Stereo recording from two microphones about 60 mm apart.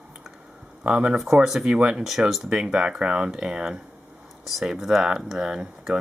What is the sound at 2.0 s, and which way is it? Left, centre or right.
Speech, centre.